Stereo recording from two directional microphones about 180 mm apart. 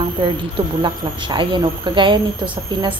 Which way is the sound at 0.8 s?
25° right (ahead or behind).